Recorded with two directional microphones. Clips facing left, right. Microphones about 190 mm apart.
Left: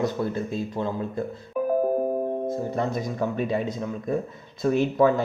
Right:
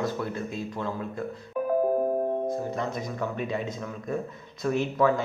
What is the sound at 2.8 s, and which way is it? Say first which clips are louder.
Speech: left 4 dB; 30° left (ahead or behind).